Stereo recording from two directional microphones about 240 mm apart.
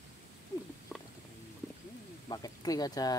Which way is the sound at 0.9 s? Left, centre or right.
Centre.